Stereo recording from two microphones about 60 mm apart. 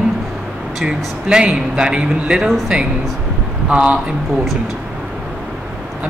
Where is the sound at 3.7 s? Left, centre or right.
Centre.